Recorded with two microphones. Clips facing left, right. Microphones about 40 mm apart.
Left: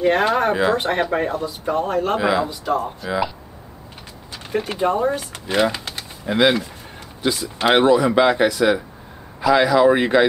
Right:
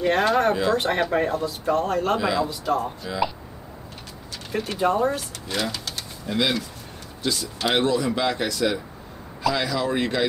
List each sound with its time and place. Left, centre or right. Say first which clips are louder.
0.0 s speech: left 3 dB; centre
0.8 s speech: left 2 dB; centre
2.6 s speech: left 2 dB; centre
4.5 s speech: left 3 dB; centre
5.3 s speech: left 8 dB; left